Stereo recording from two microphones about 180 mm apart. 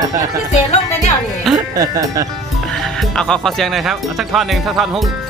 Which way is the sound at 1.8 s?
20° right (ahead or behind).